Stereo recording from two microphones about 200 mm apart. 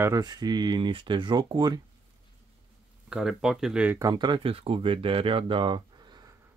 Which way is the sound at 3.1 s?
Centre (ahead or behind).